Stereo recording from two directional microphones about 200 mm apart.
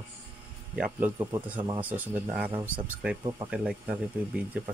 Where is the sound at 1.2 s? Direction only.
15° right (ahead or behind).